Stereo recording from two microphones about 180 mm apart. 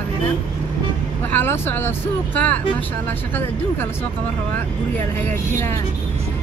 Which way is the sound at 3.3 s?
10° left (ahead or behind).